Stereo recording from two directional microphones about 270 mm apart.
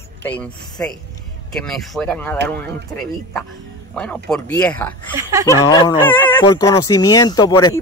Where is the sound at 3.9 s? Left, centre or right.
Centre.